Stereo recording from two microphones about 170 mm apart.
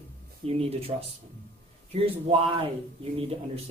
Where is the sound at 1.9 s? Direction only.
35° right (ahead or behind).